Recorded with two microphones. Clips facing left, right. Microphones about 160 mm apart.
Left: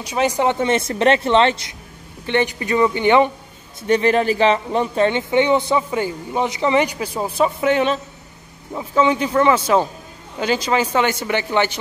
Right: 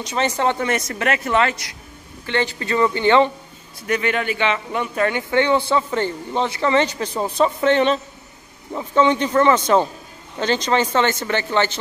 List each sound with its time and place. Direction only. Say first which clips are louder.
0.0 s speech: left 2 dB; 10° left (ahead or behind)
3.8 s speech: left 6 dB; 35° left (ahead or behind); by 11.7 s 15° left (ahead or behind)